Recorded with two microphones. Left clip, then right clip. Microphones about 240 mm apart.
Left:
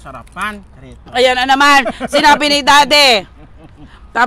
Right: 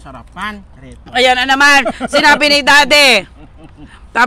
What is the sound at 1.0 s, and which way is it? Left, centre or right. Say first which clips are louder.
A man's voice: right 1 dB; centre.